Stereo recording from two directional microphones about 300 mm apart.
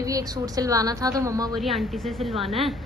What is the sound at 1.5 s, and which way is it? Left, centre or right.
Speech, centre.